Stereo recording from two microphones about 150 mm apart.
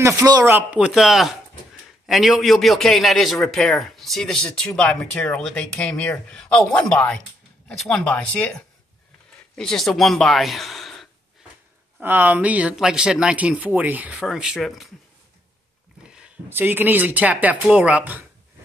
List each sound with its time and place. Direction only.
0.0 s speech: 25° right (ahead or behind)
0.6 s speech: 10° right (ahead or behind)
12.0 s speech: 15° right (ahead or behind)
16.1 s speech: 10° right (ahead or behind)